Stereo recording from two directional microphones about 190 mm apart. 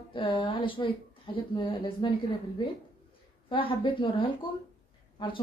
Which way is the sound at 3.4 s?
25° left (ahead or behind).